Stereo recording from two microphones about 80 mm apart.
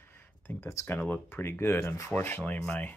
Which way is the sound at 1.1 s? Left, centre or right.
Left.